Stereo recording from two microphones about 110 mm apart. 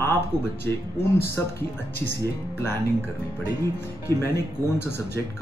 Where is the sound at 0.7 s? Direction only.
20° left (ahead or behind).